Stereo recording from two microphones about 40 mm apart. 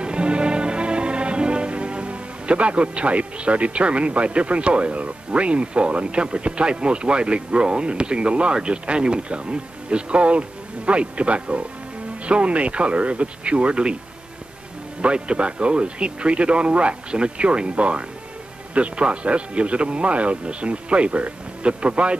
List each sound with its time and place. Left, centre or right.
0.0 s music: right
8.5 s speech: right
15.0 s speech: right